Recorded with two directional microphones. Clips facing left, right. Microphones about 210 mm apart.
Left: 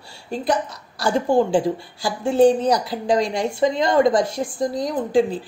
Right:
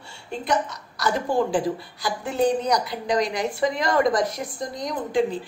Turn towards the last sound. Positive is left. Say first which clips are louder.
# left 4 dB
turn(degrees=35)  # may be behind; listen again after turning